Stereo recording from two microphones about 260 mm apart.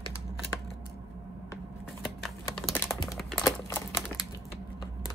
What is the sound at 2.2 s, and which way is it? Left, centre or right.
Computer keyboard, centre.